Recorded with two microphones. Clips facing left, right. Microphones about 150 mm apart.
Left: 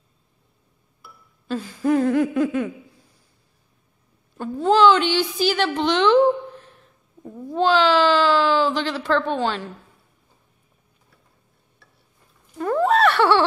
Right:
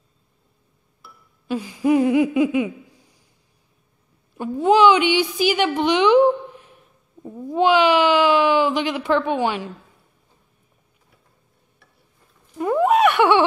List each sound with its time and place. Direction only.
1.5 s laughter: 10° right (ahead or behind)
4.4 s a woman's voice: 15° right (ahead or behind)
12.5 s giggle: 10° right (ahead or behind)